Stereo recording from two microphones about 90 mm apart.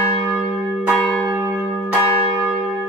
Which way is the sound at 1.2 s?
25° right (ahead or behind).